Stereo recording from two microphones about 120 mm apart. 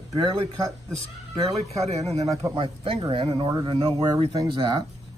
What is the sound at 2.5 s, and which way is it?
Speech, 50° right (ahead or behind).